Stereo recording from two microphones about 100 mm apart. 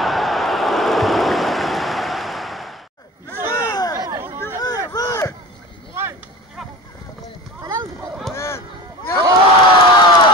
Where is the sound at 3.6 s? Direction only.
40° left (ahead or behind).